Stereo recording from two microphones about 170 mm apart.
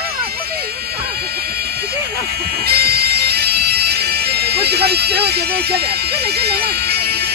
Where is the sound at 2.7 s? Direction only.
65° right (ahead or behind).